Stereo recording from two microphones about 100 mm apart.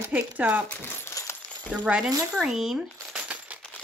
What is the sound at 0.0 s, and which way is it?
Speech, 15° right (ahead or behind).